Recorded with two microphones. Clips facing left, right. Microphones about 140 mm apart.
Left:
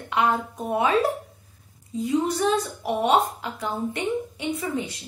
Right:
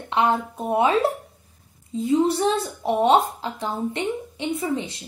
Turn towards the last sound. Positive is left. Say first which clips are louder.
# right 2 dB
turn(degrees=-30)  # may be behind; listen again after turning